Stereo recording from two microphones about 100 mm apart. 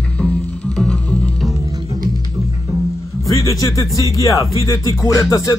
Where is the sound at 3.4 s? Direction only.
35° left (ahead or behind).